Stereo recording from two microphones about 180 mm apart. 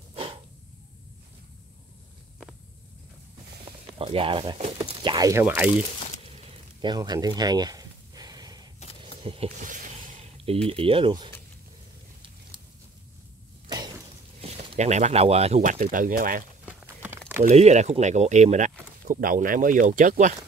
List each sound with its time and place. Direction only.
0.1 s a sound: 30° right (ahead or behind)
4.0 s speech: 30° right (ahead or behind)
5.4 s speech: 10° right (ahead or behind)
6.3 s a sound: 25° right (ahead or behind)
9.2 s speech: 30° right (ahead or behind)
9.6 s zipper: 45° right (ahead or behind)
10.7 s speech: 30° right (ahead or behind)
13.7 s a sound: 25° right (ahead or behind)
14.8 s speech: 40° right (ahead or behind)
16.6 s horse: 10° right (ahead or behind)
17.4 s speech: 40° right (ahead or behind)